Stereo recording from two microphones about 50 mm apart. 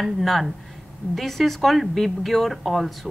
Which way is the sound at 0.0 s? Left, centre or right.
Centre.